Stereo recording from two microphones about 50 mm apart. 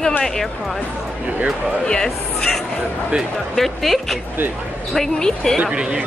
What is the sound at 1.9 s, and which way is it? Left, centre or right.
A woman's voice, centre.